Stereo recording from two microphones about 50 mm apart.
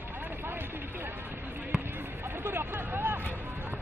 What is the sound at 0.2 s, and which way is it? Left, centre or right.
Vehicle, right.